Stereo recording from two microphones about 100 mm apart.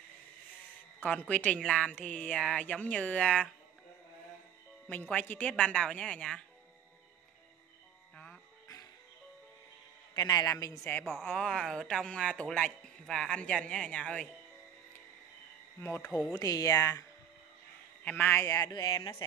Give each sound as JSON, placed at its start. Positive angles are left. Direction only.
{"t": 1.0, "sound": "speech", "side_deg": 10}
{"t": 4.8, "sound": "speech", "side_deg": 15}
{"t": 10.1, "sound": "a man's voice", "side_deg": 35}
{"t": 10.8, "sound": "speech", "side_deg": 20}
{"t": 11.4, "sound": "speech", "side_deg": 5}
{"t": 16.3, "sound": "a man's voice", "side_deg": 35}
{"t": 18.0, "sound": "a man's voice", "side_deg": 20}
{"t": 18.7, "sound": "speech", "side_deg": 40}